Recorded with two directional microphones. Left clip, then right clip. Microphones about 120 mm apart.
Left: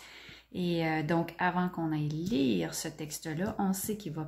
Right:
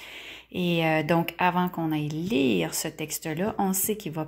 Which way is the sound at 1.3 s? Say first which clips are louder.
Right 7 dB; 40° right (ahead or behind).